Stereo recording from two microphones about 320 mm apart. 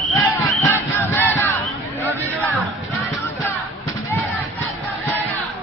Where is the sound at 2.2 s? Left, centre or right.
Centre.